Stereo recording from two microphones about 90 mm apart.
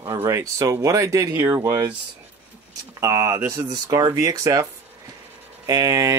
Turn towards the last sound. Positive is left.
turn(degrees=-35)  # may be behind; listen again after turning